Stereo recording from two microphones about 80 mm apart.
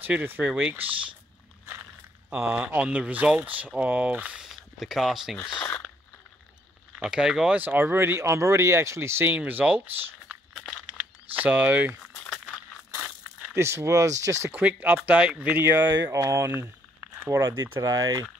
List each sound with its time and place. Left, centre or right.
0.2 s speech: right
2.3 s speech: right
4.4 s speech: centre
7.0 s speech: centre
7.5 s speech: right
8.2 s speech: right
9.3 s speech: right
11.3 s speech: right
13.5 s speech: right
14.5 s speech: centre
15.9 s speech: right
17.3 s speech: right
17.8 s speech: right